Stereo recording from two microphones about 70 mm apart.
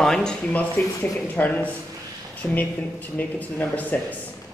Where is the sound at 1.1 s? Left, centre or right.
Left.